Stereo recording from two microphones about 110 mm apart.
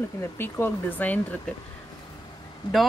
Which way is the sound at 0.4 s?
20° left (ahead or behind).